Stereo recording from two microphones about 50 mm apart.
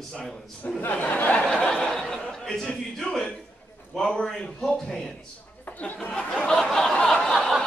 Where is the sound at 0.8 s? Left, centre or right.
Left.